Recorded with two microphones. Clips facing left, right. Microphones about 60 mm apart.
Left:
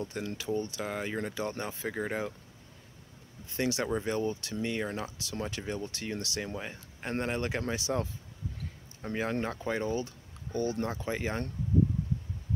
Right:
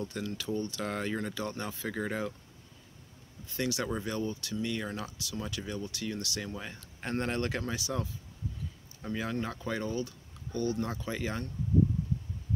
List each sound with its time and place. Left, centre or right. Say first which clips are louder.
0.0 s speech: left 1 dB; left
0.8 s speech: right 1 dB; centre
1.1 s speech: left 1 dB; left
3.5 s speech: left 2 dB; left
7.6 s speech: left 3 dB; left